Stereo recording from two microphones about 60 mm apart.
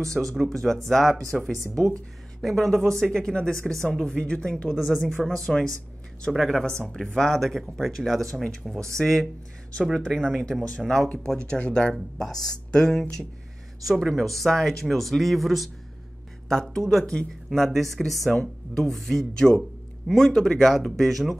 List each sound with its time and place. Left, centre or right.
0.3 s speech: centre
1.6 s speech: right
2.4 s speech: centre
10.8 s speech: centre
11.2 s speech: centre
13.8 s speech: centre
17.0 s speech: centre
17.5 s speech: centre